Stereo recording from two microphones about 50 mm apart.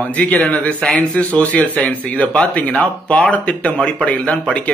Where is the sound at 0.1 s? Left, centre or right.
Left.